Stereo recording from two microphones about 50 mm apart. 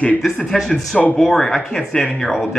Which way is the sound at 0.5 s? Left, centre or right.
Centre.